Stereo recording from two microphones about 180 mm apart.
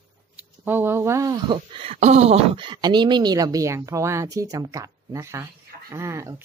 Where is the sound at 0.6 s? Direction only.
10° right (ahead or behind).